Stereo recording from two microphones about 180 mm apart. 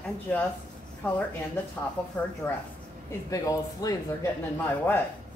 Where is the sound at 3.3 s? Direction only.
20° left (ahead or behind).